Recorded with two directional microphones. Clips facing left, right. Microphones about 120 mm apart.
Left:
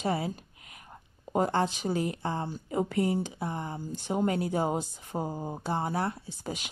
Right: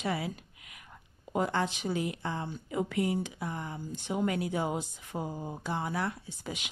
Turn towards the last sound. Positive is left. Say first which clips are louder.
# left 3 dB
turn(degrees=40)  # may be behind; listen again after turning